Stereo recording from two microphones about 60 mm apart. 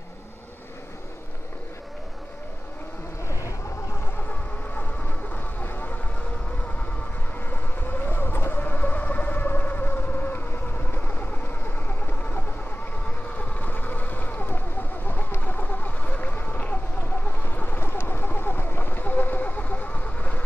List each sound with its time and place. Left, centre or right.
3.3 s vehicle: left
4.3 s vehicle: left
7.3 s vehicle: left
17.0 s a sound: left